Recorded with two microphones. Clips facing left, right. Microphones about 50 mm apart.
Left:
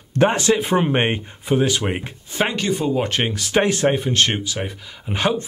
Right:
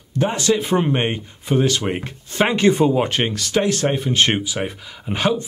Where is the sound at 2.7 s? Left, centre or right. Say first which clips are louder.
Right 4 dB; right.